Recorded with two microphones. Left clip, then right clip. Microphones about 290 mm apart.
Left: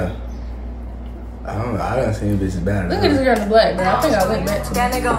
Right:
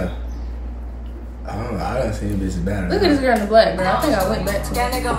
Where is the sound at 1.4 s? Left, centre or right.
Centre.